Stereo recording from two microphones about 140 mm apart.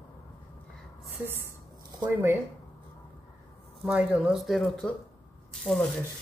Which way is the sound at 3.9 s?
10° right (ahead or behind).